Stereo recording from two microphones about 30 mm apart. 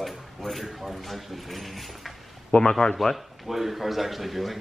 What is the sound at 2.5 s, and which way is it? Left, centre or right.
Speech, left.